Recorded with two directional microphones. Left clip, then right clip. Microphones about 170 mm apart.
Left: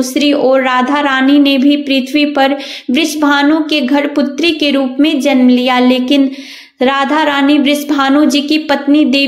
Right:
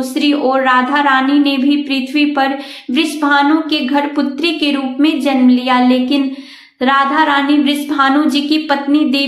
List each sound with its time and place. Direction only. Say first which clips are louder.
0.1 s speech: left 3 dB; 35° left (ahead or behind)